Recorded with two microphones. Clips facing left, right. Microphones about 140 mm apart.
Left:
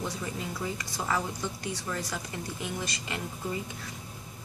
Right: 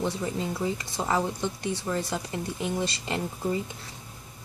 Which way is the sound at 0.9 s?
25° right (ahead or behind).